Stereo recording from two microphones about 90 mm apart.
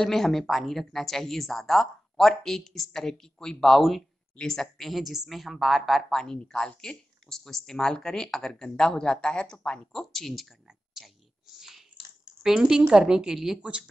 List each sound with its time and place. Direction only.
0.0 s a woman's voice: 5° left (ahead or behind)
12.4 s speech: 5° right (ahead or behind)